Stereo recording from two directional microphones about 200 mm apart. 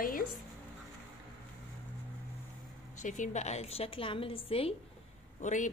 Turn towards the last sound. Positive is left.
turn(degrees=40)  # may be behind; listen again after turning